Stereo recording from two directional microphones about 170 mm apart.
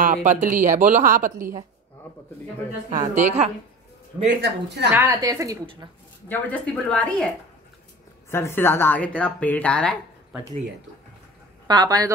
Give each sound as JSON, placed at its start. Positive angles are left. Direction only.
{"t": 0.0, "sound": "speech", "side_deg": -50}
{"t": 1.4, "sound": "a woman's voice", "side_deg": -15}
{"t": 2.9, "sound": "speech", "side_deg": -45}
{"t": 4.4, "sound": "speech", "side_deg": -85}
{"t": 4.9, "sound": "a woman's voice", "side_deg": -15}
{"t": 6.2, "sound": "speech", "side_deg": 10}
{"t": 8.3, "sound": "speech", "side_deg": 15}
{"t": 11.6, "sound": "a woman's voice", "side_deg": -25}